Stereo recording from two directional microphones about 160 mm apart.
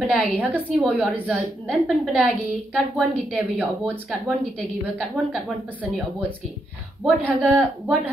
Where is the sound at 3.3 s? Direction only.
Centre (ahead or behind).